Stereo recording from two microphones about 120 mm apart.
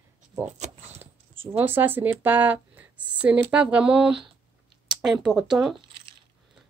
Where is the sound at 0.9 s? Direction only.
20° right (ahead or behind).